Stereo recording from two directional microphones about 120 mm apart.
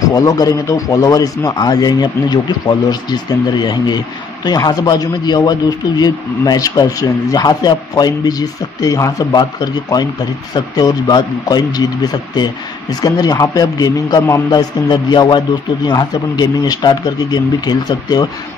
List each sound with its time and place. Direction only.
0.1 s a man's voice: 30° left (ahead or behind)